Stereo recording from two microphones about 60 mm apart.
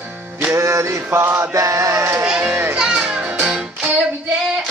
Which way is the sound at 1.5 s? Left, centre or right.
Right.